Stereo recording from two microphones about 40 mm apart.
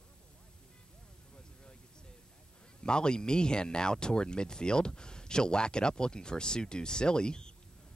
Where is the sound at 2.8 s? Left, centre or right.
Left.